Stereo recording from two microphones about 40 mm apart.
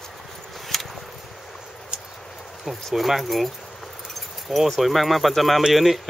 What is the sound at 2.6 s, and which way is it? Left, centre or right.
Speech, centre.